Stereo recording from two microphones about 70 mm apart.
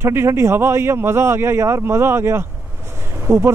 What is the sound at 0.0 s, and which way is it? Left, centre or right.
Speech, right.